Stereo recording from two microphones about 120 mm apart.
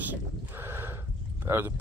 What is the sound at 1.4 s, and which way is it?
Speech, 20° right (ahead or behind).